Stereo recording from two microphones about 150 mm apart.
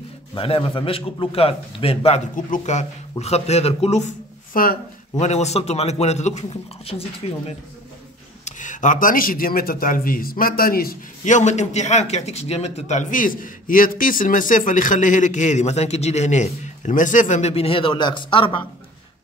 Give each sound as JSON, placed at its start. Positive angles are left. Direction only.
{"t": 0.3, "sound": "a man's voice", "side_deg": 35}
{"t": 2.3, "sound": "a man's voice", "side_deg": 55}
{"t": 4.6, "sound": "speech", "side_deg": 70}
{"t": 5.1, "sound": "a man's voice", "side_deg": 50}
{"t": 8.5, "sound": "speech", "side_deg": 55}